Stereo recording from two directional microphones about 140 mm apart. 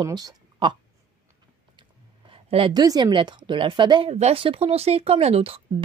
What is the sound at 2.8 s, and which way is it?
Speech, 30° right (ahead or behind).